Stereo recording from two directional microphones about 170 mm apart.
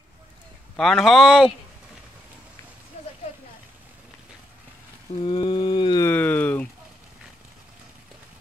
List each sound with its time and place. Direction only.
0.7 s speech: centre (ahead or behind)
5.2 s a sound: 30° left (ahead or behind)
6.0 s speech: 10° left (ahead or behind)